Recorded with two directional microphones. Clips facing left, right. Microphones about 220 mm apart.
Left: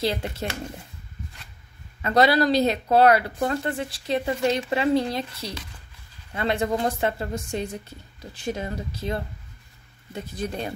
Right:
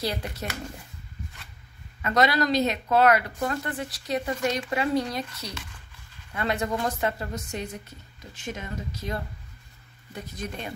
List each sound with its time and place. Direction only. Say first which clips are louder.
0.0 s speech: left 4 dB; 25° left (ahead or behind)
2.0 s speech: left 4 dB; 30° left (ahead or behind)